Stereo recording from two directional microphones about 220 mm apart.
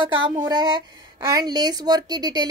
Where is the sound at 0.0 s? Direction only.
20° right (ahead or behind).